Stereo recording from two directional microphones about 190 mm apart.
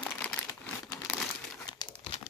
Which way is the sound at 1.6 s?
20° left (ahead or behind).